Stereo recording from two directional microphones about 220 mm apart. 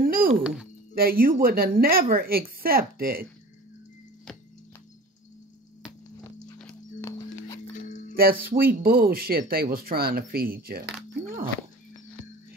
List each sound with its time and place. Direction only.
0.0 s music: 40° right (ahead or behind)
0.9 s speech: 40° right (ahead or behind)
6.6 s horse: 15° left (ahead or behind)
8.2 s speech: 40° right (ahead or behind)
11.2 s dog: 40° right (ahead or behind)